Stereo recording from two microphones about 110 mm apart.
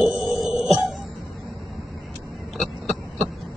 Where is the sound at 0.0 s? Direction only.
5° right (ahead or behind).